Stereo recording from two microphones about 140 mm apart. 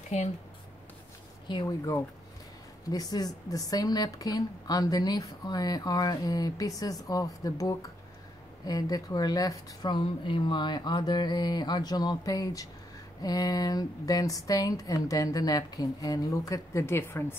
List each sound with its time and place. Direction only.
0.1 s speech: 50° left (ahead or behind)
1.5 s speech: 25° left (ahead or behind)